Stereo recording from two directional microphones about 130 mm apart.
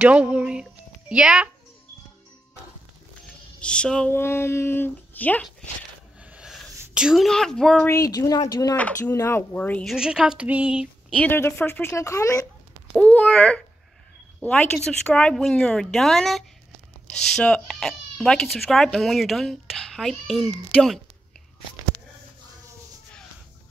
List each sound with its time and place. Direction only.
0.0 s a sound: 10° right (ahead or behind)
3.6 s speech: 5° left (ahead or behind)
4.2 s speech: 20° left (ahead or behind)
6.2 s a sound: 5° right (ahead or behind)
6.9 s speech: 5° right (ahead or behind)
7.9 s a woman's voice: 25° left (ahead or behind)
8.7 s speech: 10° left (ahead or behind)
9.9 s speech: 5° right (ahead or behind)
11.1 s a woman's voice: 10° left (ahead or behind)
12.9 s speech: 10° left (ahead or behind)